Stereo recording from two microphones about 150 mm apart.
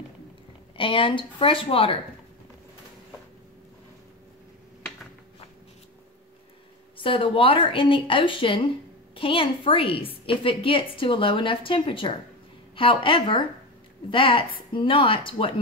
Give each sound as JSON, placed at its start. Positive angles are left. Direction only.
{"t": 0.7, "sound": "a woman's voice", "side_deg": 35}
{"t": 7.0, "sound": "a woman's voice", "side_deg": 35}